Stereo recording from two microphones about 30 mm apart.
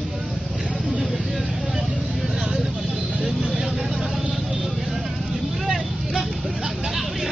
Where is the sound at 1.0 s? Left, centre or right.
Centre.